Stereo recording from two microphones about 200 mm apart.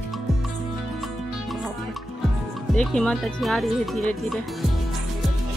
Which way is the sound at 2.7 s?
5° left (ahead or behind).